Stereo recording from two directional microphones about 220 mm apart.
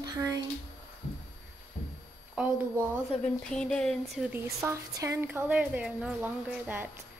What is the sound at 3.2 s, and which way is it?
Speech, 5° left (ahead or behind).